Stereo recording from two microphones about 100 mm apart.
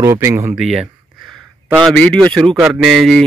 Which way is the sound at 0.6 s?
5° right (ahead or behind).